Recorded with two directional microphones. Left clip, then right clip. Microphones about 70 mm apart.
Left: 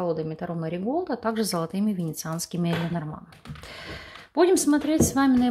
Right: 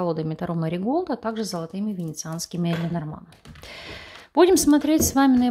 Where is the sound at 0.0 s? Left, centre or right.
Right.